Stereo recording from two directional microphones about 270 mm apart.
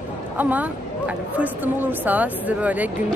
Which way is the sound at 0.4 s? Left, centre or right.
Centre.